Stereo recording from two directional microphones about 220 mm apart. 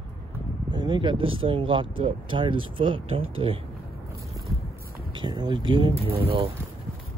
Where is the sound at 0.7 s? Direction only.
20° right (ahead or behind).